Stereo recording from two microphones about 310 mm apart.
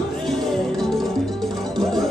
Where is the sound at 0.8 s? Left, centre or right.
Centre.